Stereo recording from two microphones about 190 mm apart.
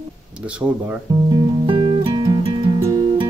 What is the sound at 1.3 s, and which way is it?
Music, 25° right (ahead or behind).